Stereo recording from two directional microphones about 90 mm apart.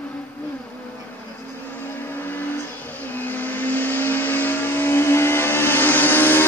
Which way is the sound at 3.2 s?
20° left (ahead or behind).